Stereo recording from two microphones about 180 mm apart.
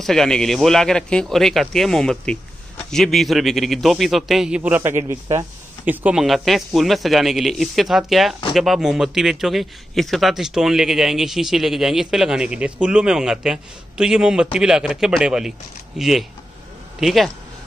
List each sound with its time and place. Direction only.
0.0 s a man's voice: centre (ahead or behind)